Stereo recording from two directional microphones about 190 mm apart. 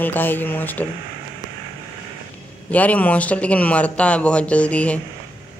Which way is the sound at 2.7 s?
10° left (ahead or behind).